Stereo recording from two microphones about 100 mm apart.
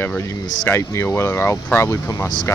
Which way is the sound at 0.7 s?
25° left (ahead or behind).